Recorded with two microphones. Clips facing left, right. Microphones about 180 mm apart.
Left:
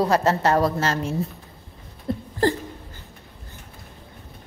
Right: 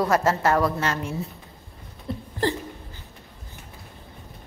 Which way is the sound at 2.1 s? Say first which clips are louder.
Left 5 dB; 50° left (ahead or behind).